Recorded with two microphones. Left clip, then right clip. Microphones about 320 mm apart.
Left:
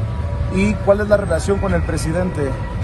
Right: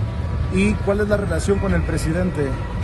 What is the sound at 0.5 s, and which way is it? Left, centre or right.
Speech, centre.